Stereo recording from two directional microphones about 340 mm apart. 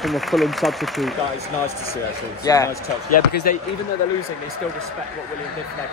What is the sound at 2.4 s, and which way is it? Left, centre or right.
Speech, centre.